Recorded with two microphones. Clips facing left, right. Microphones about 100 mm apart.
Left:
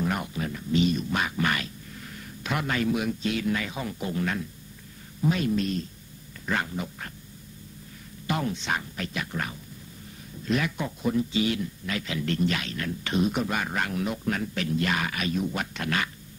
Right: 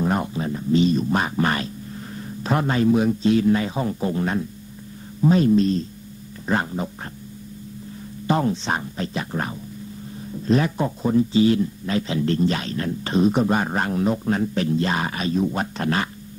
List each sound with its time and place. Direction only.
0.0 s speech: 30° right (ahead or behind)
8.3 s speech: 35° right (ahead or behind)